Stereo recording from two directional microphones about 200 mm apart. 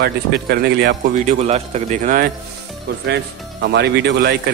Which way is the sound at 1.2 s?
35° right (ahead or behind).